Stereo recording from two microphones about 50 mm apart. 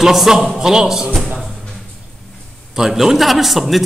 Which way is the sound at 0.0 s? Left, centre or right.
Centre.